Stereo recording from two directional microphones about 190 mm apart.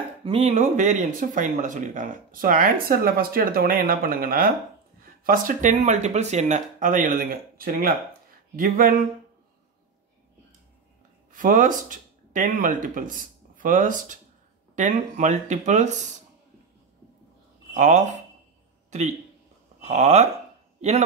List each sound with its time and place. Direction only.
0.2 s speech: 30° right (ahead or behind); by 9.0 s 45° right (ahead or behind)
11.3 s speech: 45° right (ahead or behind)
17.7 s a man's voice: 40° right (ahead or behind)